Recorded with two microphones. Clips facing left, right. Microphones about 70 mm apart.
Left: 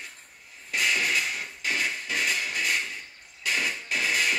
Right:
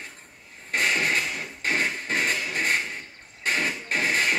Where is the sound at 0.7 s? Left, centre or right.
Right.